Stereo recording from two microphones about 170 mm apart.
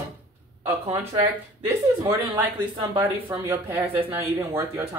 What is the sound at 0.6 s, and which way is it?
Speech, 30° right (ahead or behind).